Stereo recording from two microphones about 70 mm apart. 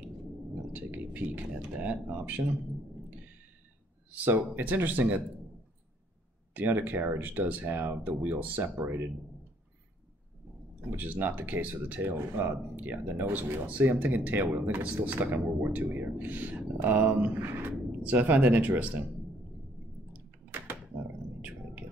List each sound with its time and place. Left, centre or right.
0.7 s speech: right
4.1 s speech: right
6.5 s speech: right
11.0 s speech: right